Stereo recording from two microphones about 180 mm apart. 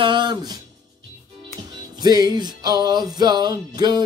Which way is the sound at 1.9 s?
20° right (ahead or behind).